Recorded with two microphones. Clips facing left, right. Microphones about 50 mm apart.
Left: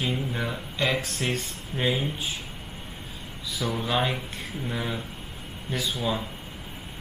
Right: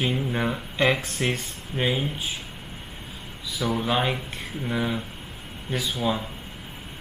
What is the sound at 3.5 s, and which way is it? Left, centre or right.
Speech, centre.